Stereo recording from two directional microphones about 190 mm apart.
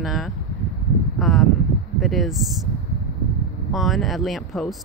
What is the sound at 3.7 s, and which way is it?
Speech, centre (ahead or behind).